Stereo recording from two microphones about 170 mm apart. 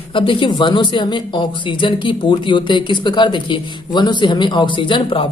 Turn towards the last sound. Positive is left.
turn(degrees=30)  # may be behind; listen again after turning